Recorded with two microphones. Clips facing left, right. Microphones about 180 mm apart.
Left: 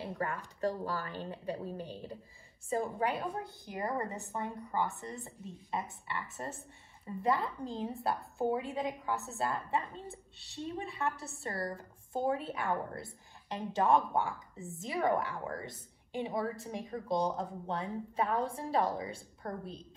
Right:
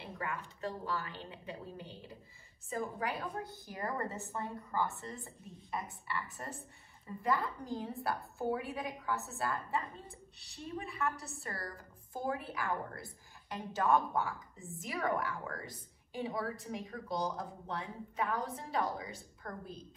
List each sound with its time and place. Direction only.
0.0 s a woman's voice: 35° left (ahead or behind)